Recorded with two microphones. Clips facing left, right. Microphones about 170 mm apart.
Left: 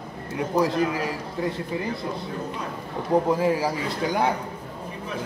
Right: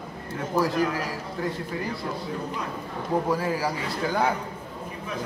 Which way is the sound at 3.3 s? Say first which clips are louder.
Left 4 dB; 20° left (ahead or behind).